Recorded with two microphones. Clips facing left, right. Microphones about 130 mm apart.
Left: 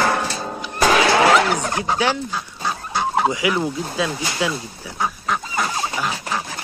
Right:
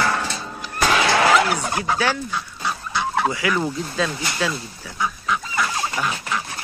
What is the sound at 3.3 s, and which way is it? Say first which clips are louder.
Speech: left 2 dB; 15° left (ahead or behind).